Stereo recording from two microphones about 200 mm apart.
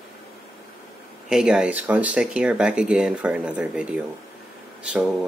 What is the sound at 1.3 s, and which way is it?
Speech, 5° right (ahead or behind).